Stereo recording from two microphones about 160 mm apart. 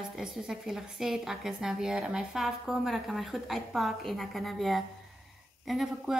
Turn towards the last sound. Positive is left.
turn(degrees=-5)  # may be behind; listen again after turning